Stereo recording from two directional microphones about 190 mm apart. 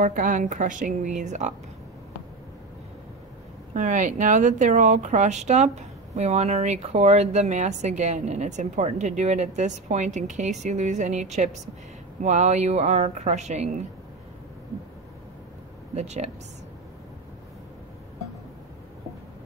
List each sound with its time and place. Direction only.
0.0 s a woman's voice: 45° right (ahead or behind)
3.7 s speech: 40° right (ahead or behind)
15.9 s speech: 35° right (ahead or behind)